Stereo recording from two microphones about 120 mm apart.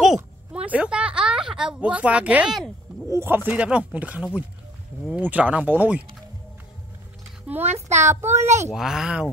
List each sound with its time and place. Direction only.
0.0 s a sound: 5° right (ahead or behind)
3.1 s speech: 20° right (ahead or behind)
7.6 s a child's voice: 70° right (ahead or behind)
8.7 s speech: 5° right (ahead or behind)